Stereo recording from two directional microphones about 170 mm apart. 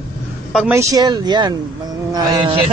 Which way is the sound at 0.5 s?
5° right (ahead or behind).